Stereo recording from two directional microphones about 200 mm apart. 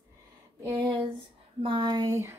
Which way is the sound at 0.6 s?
20° right (ahead or behind).